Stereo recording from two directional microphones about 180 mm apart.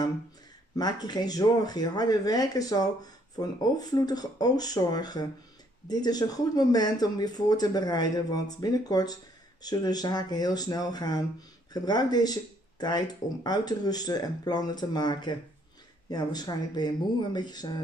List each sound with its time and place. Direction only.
0.7 s speech: 20° left (ahead or behind)